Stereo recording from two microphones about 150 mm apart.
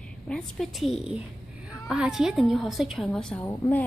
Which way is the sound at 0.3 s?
Centre (ahead or behind).